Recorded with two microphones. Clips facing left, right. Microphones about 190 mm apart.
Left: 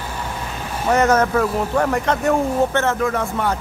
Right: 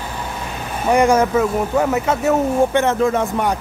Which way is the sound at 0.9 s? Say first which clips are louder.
Right 2 dB; 10° right (ahead or behind).